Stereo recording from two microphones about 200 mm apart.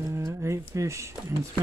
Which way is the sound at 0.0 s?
15° right (ahead or behind).